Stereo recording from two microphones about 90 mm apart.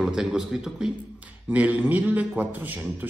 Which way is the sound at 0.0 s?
5° right (ahead or behind).